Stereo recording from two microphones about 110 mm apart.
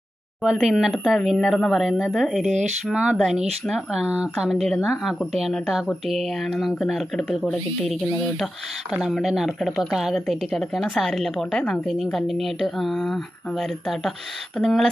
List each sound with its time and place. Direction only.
0.4 s a woman's voice: centre (ahead or behind)